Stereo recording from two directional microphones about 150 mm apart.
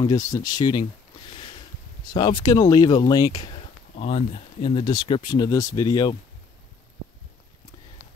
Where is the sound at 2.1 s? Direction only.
30° left (ahead or behind).